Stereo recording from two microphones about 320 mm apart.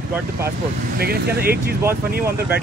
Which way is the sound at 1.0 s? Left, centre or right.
Right.